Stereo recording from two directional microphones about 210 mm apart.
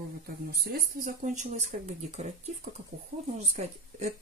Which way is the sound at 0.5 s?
40° right (ahead or behind).